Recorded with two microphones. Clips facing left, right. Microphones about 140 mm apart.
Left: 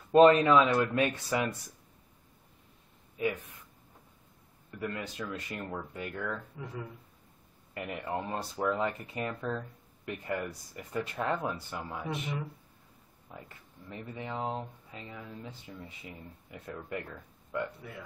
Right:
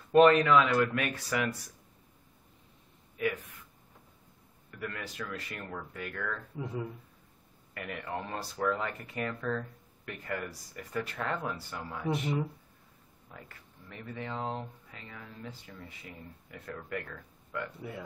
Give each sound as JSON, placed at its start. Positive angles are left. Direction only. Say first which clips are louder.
{"t": 0.1, "sound": "speech", "louder": "left 1 dB", "side_deg": 25}
{"t": 3.2, "sound": "speech", "louder": "even", "side_deg": 25}
{"t": 4.6, "sound": "speech", "louder": "left 3 dB", "side_deg": 25}
{"t": 6.6, "sound": "speech", "louder": "right 4 dB", "side_deg": -25}
{"t": 7.7, "sound": "speech", "louder": "left 2 dB", "side_deg": 20}
{"t": 13.3, "sound": "speech", "louder": "left 2 dB", "side_deg": 20}